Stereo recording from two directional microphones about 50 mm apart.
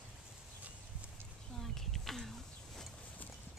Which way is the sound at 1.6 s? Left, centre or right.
Centre.